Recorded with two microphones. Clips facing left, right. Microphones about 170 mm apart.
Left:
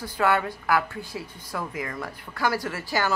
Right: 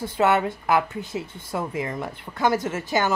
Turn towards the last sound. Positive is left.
turn(degrees=-20)  # may be behind; listen again after turning